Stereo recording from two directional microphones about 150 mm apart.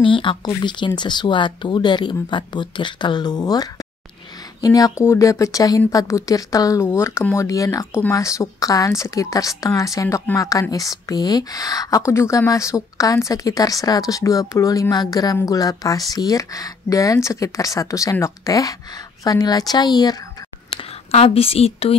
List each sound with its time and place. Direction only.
0.0 s a woman's voice: 35° left (ahead or behind)
20.7 s a woman's voice: 40° left (ahead or behind)